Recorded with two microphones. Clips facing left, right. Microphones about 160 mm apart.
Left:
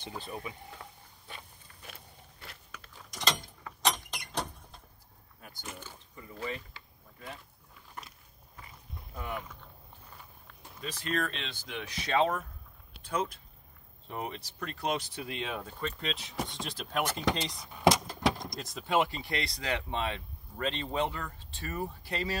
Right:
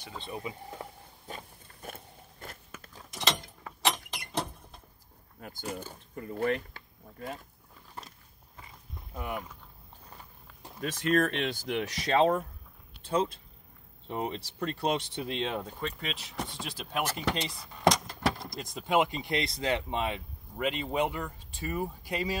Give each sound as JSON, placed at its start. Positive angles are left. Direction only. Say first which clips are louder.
{"t": 0.2, "sound": "speech", "louder": "right 7 dB", "side_deg": -25}
{"t": 1.2, "sound": "a sound", "louder": "right 6 dB", "side_deg": -45}
{"t": 2.4, "sound": "biting", "louder": "right 4 dB", "side_deg": -45}
{"t": 3.1, "sound": "door", "louder": "right 1 dB", "side_deg": -5}
{"t": 3.8, "sound": "vehicle", "louder": "right 1 dB", "side_deg": -5}
{"t": 5.4, "sound": "speech", "louder": "right 8 dB", "side_deg": -45}
{"t": 6.1, "sound": "speech", "louder": "right 9 dB", "side_deg": -55}
{"t": 9.1, "sound": "speech", "louder": "right 2 dB", "side_deg": -15}
{"t": 11.1, "sound": "speech", "louder": "right 8 dB", "side_deg": -45}
{"t": 16.0, "sound": "speech", "louder": "left 1 dB", "side_deg": -5}
{"t": 17.7, "sound": "keys jangling", "louder": "even", "side_deg": 5}
{"t": 18.9, "sound": "speech", "louder": "right 2 dB", "side_deg": -20}